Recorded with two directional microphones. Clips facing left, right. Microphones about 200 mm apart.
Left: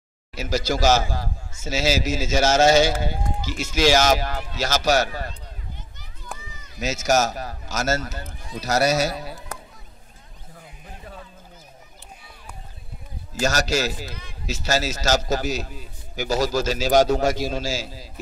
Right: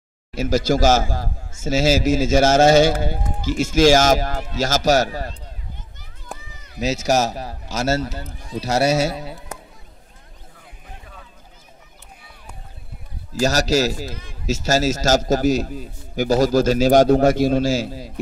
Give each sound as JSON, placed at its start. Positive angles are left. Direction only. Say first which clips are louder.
{"t": 0.3, "sound": "a man's voice", "louder": "right 6 dB", "side_deg": -50}
{"t": 5.9, "sound": "children playing", "louder": "right 2 dB", "side_deg": -50}
{"t": 6.8, "sound": "a man's voice", "louder": "right 2 dB", "side_deg": -30}
{"t": 13.3, "sound": "a man's voice", "louder": "right 4 dB", "side_deg": -35}